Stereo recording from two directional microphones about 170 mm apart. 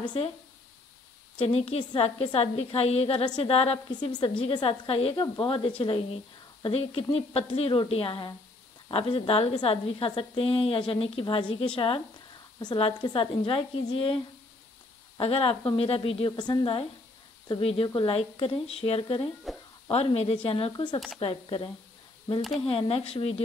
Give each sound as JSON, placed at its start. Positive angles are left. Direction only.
{"t": 0.0, "sound": "speech", "side_deg": 25}
{"t": 1.4, "sound": "a woman's voice", "side_deg": 35}
{"t": 22.7, "sound": "a woman's voice", "side_deg": 35}